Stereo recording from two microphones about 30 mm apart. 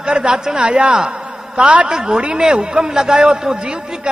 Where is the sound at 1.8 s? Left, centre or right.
Centre.